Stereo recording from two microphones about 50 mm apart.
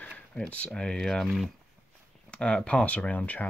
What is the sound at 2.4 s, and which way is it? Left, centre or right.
Speech, centre.